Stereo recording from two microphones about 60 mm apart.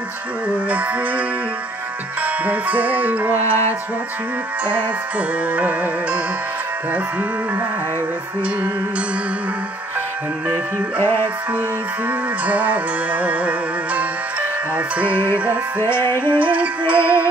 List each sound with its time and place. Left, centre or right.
0.5 s music: right
2.2 s music: right
5.5 s music: right
11.0 s music: left
12.1 s music: right
15.8 s music: left
16.3 s music: right